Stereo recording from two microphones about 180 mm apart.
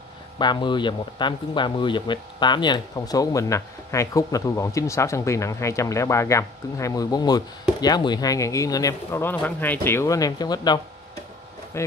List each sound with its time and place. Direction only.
0.4 s speech: 25° left (ahead or behind)